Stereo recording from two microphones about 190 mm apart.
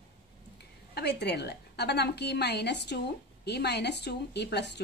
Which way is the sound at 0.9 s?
60° left (ahead or behind).